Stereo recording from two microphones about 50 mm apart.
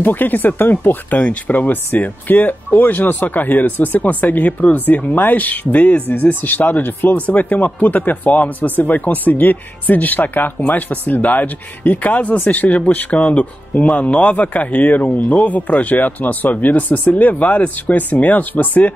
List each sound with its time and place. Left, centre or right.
0.0 s speech: left